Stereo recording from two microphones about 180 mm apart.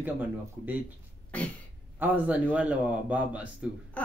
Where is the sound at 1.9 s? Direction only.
10° right (ahead or behind).